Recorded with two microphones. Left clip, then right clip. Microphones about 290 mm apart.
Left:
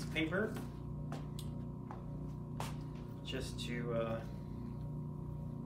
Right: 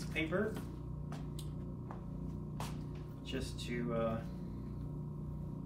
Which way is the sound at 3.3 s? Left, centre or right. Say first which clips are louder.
Right 2 dB; centre.